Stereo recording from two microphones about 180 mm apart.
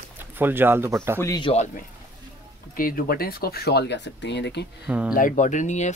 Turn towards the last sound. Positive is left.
turn(degrees=40)  # may be behind; listen again after turning